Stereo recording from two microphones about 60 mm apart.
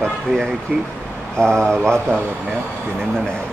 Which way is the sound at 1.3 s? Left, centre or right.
Centre.